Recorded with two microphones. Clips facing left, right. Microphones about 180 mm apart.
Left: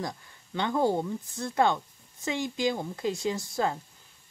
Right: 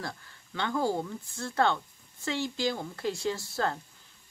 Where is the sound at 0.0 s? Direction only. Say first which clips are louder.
Left 4 dB; 20° left (ahead or behind).